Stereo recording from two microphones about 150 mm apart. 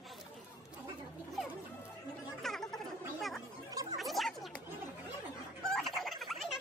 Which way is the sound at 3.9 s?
Centre (ahead or behind).